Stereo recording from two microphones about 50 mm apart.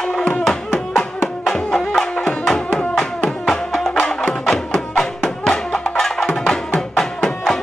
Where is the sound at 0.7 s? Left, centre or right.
Left.